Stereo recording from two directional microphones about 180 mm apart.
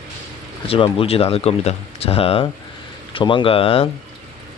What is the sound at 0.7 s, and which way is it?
Speech, 35° left (ahead or behind).